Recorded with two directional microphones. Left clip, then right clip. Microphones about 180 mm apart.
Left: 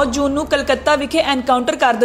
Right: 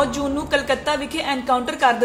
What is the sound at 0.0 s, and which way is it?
A woman's voice, 30° left (ahead or behind).